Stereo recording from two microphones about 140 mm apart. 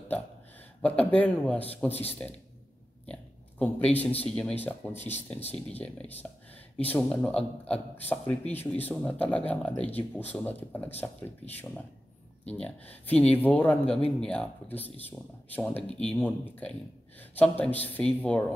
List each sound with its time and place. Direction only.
0.8 s speech: 10° left (ahead or behind)
3.1 s a sound: 10° left (ahead or behind)
4.4 s speech: 10° left (ahead or behind)
5.4 s speech: 45° left (ahead or behind)
5.8 s speech: 15° left (ahead or behind)